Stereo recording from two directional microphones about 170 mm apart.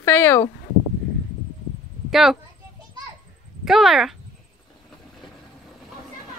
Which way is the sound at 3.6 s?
Centre (ahead or behind).